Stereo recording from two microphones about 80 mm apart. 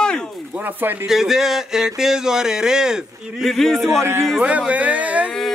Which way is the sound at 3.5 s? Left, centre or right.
Centre.